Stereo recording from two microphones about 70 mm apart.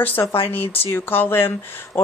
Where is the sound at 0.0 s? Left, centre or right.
Left.